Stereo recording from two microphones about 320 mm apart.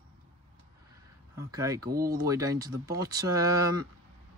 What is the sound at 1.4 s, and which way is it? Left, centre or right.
Speech, centre.